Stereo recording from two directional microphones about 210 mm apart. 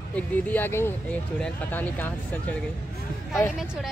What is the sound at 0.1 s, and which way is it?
Speech, 10° left (ahead or behind).